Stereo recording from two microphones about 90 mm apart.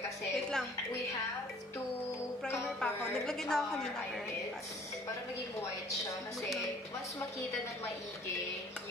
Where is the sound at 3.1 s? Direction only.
5° left (ahead or behind).